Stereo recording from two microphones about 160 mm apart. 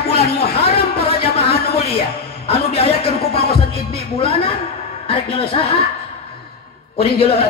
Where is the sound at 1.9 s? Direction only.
40° left (ahead or behind).